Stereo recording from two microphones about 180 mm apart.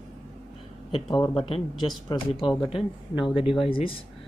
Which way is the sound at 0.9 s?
25° left (ahead or behind).